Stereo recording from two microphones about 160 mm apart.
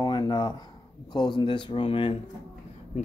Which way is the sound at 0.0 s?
25° left (ahead or behind).